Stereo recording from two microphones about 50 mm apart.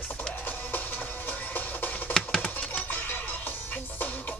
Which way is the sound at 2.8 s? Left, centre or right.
Left.